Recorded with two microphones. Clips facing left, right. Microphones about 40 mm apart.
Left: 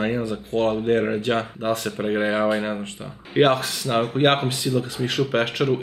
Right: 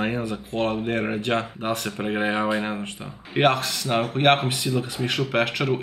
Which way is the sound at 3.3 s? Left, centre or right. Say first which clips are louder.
Left 2 dB; centre.